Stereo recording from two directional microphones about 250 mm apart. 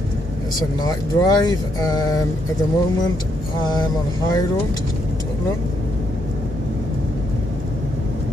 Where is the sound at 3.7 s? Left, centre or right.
Centre.